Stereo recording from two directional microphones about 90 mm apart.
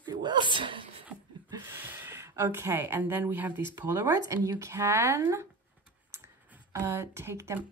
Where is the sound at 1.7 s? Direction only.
25° right (ahead or behind).